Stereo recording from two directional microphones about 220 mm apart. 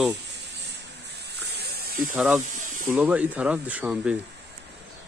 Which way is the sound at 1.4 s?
45° right (ahead or behind).